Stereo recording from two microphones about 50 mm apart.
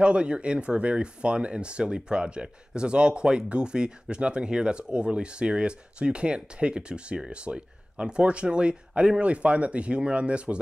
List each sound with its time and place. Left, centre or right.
0.0 s speech: right